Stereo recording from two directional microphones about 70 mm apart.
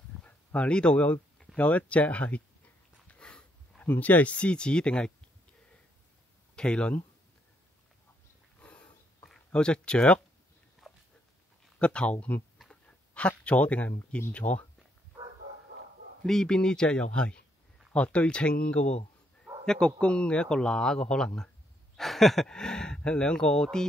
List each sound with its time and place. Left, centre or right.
0.2 s speech: centre
3.1 s a sound: centre
3.8 s speech: left
6.5 s speech: centre
8.5 s a sound: centre
9.3 s speech: centre
10.8 s dog: centre
11.8 s speech: centre
12.6 s a sound: centre
13.4 s speech: centre
16.3 s speech: centre